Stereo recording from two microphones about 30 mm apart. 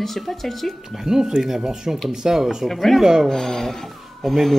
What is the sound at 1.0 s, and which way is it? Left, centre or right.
A man's voice, centre.